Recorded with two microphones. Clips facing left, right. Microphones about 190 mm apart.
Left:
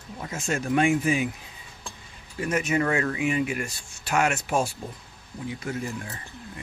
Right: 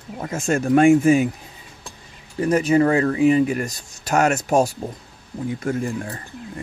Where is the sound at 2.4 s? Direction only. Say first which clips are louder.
Right 8 dB; 35° right (ahead or behind).